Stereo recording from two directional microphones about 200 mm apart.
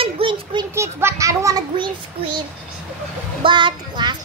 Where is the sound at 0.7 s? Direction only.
10° right (ahead or behind).